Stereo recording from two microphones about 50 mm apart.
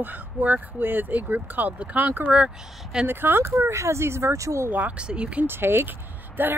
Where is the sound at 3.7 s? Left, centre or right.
Right.